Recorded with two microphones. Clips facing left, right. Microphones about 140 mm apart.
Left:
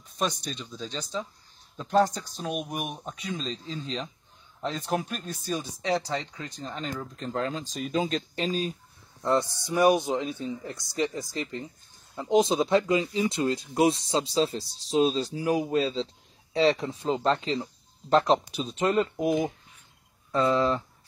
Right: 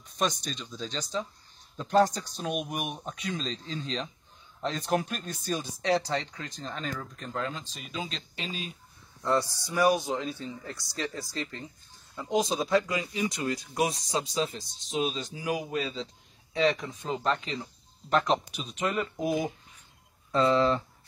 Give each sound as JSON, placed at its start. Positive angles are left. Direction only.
{"t": 0.2, "sound": "speech", "side_deg": 5}
{"t": 6.7, "sound": "speech", "side_deg": 20}
{"t": 9.2, "sound": "speech", "side_deg": 20}
{"t": 19.1, "sound": "speech", "side_deg": 0}
{"t": 20.2, "sound": "speech", "side_deg": 10}